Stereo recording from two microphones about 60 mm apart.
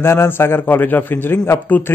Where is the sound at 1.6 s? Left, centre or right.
Left.